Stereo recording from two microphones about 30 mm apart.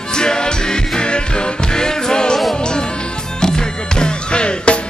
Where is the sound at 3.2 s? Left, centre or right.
Left.